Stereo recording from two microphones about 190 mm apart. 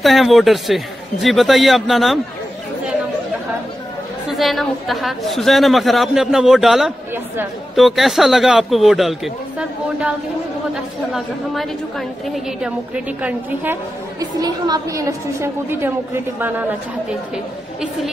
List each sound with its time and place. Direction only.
0.0 s a woman's voice: centre (ahead or behind)
4.3 s a woman's voice: centre (ahead or behind)
12.6 s a woman's voice: 5° right (ahead or behind)
14.4 s a woman's voice: 20° right (ahead or behind)